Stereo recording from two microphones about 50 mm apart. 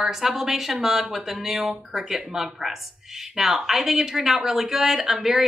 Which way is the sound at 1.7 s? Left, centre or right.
Centre.